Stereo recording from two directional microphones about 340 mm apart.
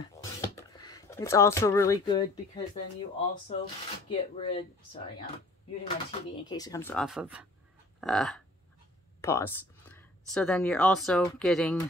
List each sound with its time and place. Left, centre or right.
0.0 s speech: centre
6.4 s speech: centre